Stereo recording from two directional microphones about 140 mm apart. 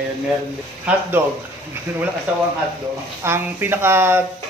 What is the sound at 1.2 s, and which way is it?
Speech, 15° right (ahead or behind).